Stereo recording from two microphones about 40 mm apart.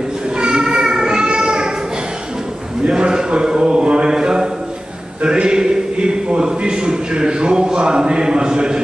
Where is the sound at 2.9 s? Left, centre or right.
Centre.